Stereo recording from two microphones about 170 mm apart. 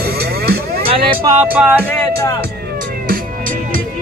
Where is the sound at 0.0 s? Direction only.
65° right (ahead or behind).